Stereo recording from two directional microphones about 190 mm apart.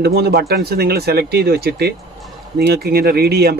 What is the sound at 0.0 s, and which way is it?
Speech, 55° right (ahead or behind).